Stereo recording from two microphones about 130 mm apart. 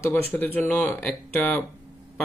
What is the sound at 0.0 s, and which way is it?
Speech, 15° left (ahead or behind).